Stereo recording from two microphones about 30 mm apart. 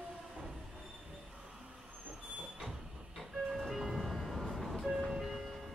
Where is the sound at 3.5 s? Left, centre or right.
Centre.